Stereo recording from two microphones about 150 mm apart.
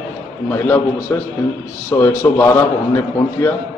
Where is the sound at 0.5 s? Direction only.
15° left (ahead or behind).